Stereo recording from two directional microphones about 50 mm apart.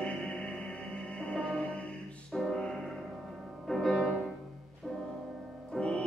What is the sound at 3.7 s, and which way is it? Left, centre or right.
Music, centre.